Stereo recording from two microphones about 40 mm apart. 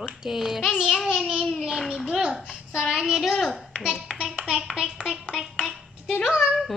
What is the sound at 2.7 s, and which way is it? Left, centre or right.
Child singing, centre.